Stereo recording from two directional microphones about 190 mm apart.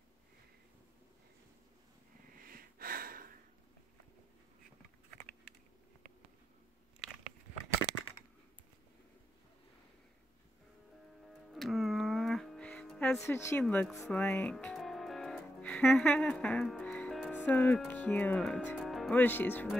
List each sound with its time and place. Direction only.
2.4 s a sound: 50° right (ahead or behind)
11.2 s music: centre (ahead or behind)
14.0 s speech: 10° left (ahead or behind)